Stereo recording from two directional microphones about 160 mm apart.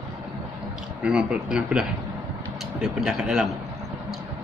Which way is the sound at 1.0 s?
5° right (ahead or behind).